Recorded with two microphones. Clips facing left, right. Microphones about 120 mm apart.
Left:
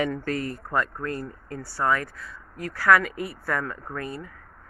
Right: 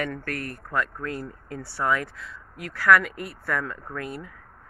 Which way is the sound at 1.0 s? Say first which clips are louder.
Left 1 dB; centre (ahead or behind).